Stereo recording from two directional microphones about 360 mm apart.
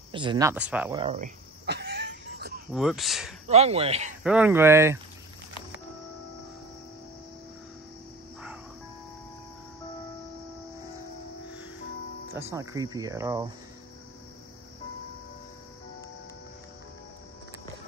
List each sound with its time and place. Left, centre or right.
0.1 s a sound: centre
2.7 s speech: centre
3.4 s speech: centre
4.2 s speech: centre
12.4 s speech: centre